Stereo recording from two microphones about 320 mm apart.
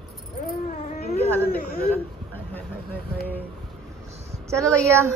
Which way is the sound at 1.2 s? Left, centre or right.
Centre.